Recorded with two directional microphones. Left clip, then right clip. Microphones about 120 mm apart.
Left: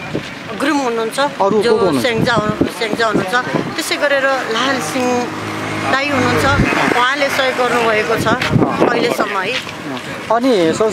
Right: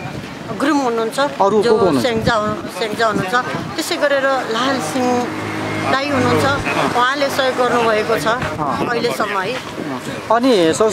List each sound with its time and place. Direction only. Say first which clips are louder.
0.6 s speech: even; centre (ahead or behind)